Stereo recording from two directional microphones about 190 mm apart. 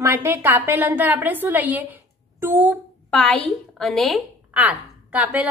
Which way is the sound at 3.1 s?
5° left (ahead or behind).